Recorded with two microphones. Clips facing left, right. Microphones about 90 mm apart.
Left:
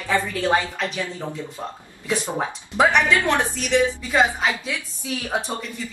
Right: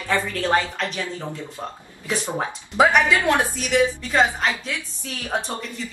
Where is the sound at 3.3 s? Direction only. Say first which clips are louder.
Even; 10° right (ahead or behind).